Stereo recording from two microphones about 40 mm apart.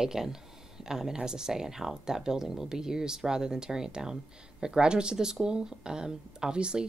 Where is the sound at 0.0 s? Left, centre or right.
Centre.